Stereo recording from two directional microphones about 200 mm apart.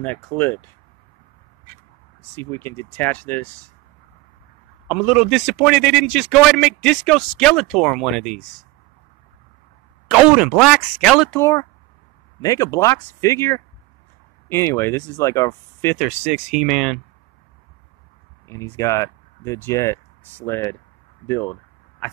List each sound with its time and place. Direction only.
0.0 s speech: 10° left (ahead or behind)
2.3 s speech: 10° left (ahead or behind)
4.8 s a man's voice: 5° right (ahead or behind)
10.0 s a man's voice: 5° right (ahead or behind); by 16.0 s 15° left (ahead or behind)
16.0 s a man's voice: 5° right (ahead or behind)
18.5 s speech: 15° left (ahead or behind)